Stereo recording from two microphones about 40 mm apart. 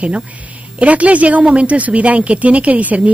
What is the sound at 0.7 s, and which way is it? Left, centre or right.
Speech, right.